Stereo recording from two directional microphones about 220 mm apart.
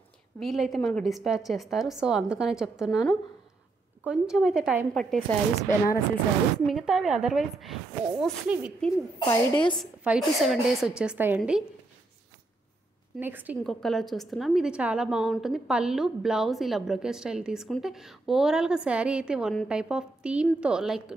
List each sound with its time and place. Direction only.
0.4 s a woman's voice: centre (ahead or behind)
6.7 s a woman's voice: centre (ahead or behind)
9.3 s a woman's voice: 20° left (ahead or behind)
9.8 s a woman's voice: centre (ahead or behind)
13.2 s a woman's voice: 10° right (ahead or behind)